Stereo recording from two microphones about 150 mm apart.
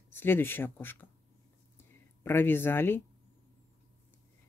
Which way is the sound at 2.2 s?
15° left (ahead or behind).